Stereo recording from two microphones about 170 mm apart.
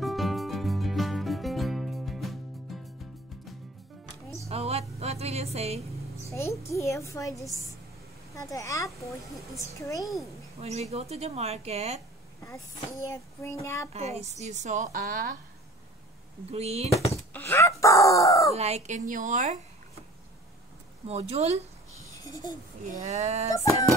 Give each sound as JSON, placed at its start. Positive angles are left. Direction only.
{"t": 0.0, "sound": "music", "side_deg": 0}
{"t": 4.5, "sound": "music", "side_deg": -40}
{"t": 6.3, "sound": "a child's voice", "side_deg": 15}
{"t": 8.4, "sound": "a child's voice", "side_deg": 20}
{"t": 10.6, "sound": "speech", "side_deg": -40}
{"t": 12.4, "sound": "a child's voice", "side_deg": 20}
{"t": 13.9, "sound": "speech", "side_deg": -40}
{"t": 16.4, "sound": "speech", "side_deg": -35}
{"t": 17.1, "sound": "a sound", "side_deg": 15}
{"t": 18.5, "sound": "speech", "side_deg": -40}
{"t": 21.1, "sound": "speech", "side_deg": -40}
{"t": 22.8, "sound": "speech", "side_deg": -45}